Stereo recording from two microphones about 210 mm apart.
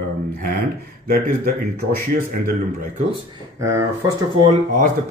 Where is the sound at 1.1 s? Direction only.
45° right (ahead or behind).